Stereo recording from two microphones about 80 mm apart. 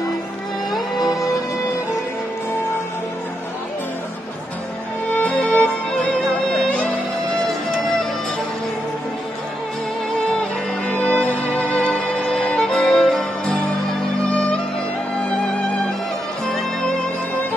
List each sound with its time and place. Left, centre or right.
0.9 s music: left
5.1 s music: centre
10.9 s music: centre
15.2 s music: centre